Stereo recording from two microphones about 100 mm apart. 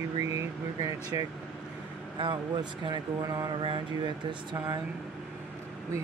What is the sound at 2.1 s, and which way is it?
Speech, 50° right (ahead or behind).